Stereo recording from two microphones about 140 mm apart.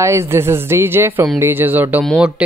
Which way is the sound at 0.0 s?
20° right (ahead or behind).